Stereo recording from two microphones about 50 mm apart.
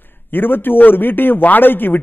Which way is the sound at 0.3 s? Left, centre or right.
Left.